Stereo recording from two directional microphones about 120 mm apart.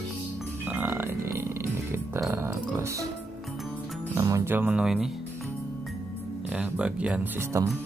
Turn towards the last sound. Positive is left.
turn(degrees=-25)  # may be behind; listen again after turning